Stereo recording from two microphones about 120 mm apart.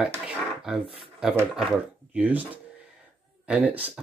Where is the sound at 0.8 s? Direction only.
45° right (ahead or behind).